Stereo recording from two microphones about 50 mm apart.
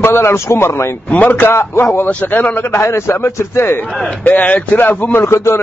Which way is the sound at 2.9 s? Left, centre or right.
Left.